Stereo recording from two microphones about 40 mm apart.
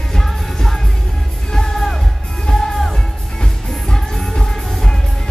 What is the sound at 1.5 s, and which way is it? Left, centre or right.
Music, centre.